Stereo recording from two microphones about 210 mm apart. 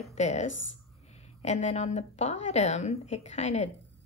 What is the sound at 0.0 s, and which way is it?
A woman's voice, 30° left (ahead or behind).